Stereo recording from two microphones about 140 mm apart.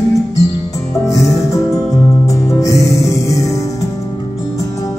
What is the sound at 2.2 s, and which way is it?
Music, 25° left (ahead or behind).